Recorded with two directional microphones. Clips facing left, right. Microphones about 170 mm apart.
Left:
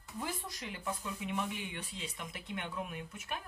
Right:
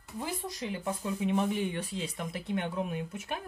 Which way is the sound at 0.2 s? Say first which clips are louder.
Right 5 dB; 25° right (ahead or behind).